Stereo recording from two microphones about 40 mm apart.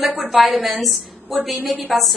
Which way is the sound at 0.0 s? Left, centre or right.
Centre.